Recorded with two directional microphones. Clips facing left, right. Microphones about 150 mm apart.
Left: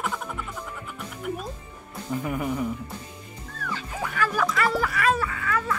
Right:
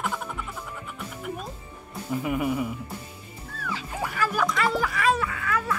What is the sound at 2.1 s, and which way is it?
Speech, 5° right (ahead or behind).